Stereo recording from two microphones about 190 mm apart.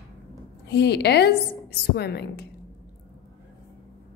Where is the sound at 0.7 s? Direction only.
60° left (ahead or behind).